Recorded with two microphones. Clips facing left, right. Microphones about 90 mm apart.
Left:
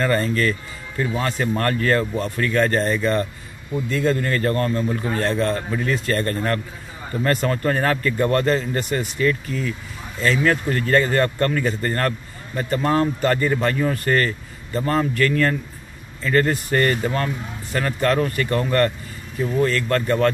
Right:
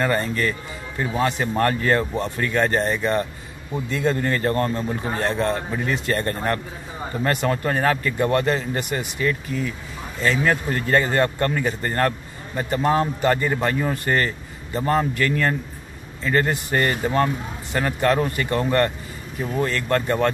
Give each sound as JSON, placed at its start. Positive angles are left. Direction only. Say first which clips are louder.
{"t": 0.0, "sound": "a man's voice", "louder": "left 2 dB", "side_deg": -15}